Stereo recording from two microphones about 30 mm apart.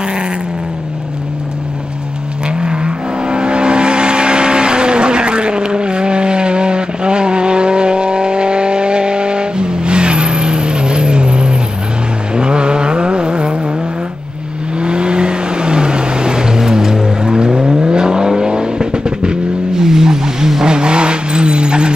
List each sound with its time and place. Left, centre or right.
2.6 s vehicle: right
14.8 s vehicle: right
19.8 s vehicle: centre
20.7 s vehicle: right